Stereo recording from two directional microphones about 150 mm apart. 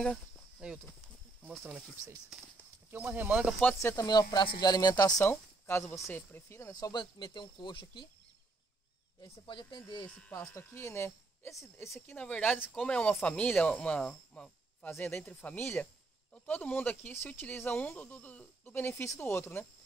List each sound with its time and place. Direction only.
0.6 s a sound: 5° right (ahead or behind)
2.3 s speech: 5° right (ahead or behind)
3.8 s speech: 20° left (ahead or behind)
5.2 s speech: 15° left (ahead or behind); by 8.1 s 30° left (ahead or behind)
9.2 s speech: 30° left (ahead or behind)
10.0 s speech: 10° left (ahead or behind)
12.2 s speech: 10° left (ahead or behind)